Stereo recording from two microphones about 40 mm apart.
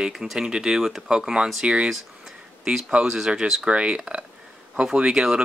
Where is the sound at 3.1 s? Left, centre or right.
Centre.